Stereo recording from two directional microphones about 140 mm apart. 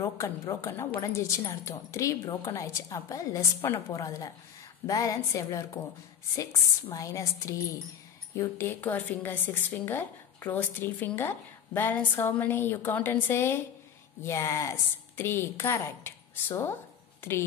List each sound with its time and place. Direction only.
0.0 s a woman's voice: 20° left (ahead or behind)